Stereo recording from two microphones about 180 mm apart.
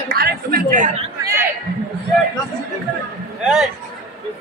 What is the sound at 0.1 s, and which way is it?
Chatter, 60° right (ahead or behind).